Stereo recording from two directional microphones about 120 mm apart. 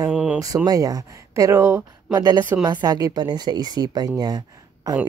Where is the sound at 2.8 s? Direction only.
30° right (ahead or behind).